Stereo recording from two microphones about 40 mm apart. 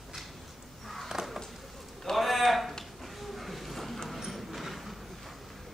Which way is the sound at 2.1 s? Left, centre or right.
Centre.